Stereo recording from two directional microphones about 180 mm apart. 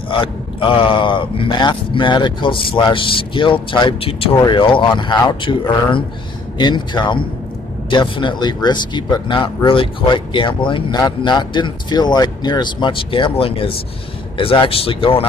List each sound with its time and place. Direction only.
0.1 s speech: 30° left (ahead or behind)